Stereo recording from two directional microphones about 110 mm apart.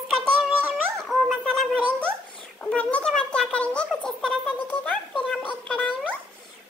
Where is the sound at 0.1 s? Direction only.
Centre (ahead or behind).